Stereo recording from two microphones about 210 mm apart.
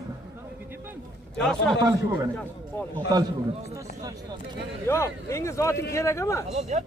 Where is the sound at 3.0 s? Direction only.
20° right (ahead or behind).